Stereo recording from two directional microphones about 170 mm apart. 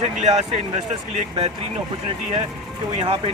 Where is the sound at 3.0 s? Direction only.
35° right (ahead or behind).